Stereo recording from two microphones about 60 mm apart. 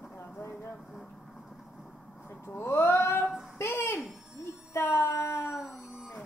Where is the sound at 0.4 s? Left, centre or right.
Left.